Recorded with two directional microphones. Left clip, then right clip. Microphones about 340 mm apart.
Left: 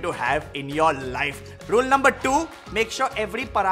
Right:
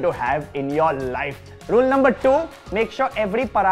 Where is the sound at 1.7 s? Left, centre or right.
Right.